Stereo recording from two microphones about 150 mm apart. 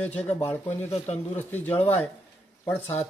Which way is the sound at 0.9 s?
45° left (ahead or behind).